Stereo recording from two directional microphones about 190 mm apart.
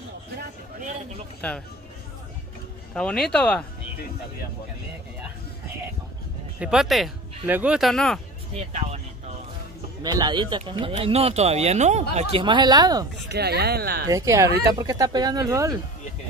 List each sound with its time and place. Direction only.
1.4 s speech: 5° left (ahead or behind)
2.9 s speech: 5° left (ahead or behind)
6.6 s speech: 5° right (ahead or behind)
8.5 s speech: 35° right (ahead or behind)
10.0 s speech: 20° right (ahead or behind)
13.3 s speech: 60° right (ahead or behind)
14.0 s speech: 15° right (ahead or behind)